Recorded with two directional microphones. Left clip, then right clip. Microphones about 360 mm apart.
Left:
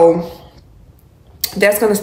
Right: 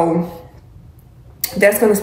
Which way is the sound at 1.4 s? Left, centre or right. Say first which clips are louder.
Even; centre.